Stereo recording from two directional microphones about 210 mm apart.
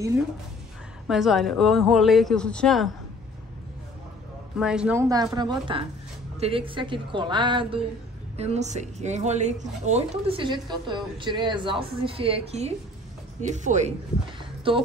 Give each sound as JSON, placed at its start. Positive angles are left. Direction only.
{"t": 1.0, "sound": "speech", "side_deg": 0}
{"t": 4.6, "sound": "speech", "side_deg": -5}
{"t": 14.4, "sound": "a sound", "side_deg": -25}